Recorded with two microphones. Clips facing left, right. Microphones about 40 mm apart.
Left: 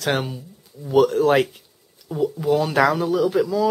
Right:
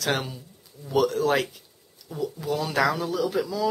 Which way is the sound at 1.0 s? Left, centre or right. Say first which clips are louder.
Left 6 dB; left.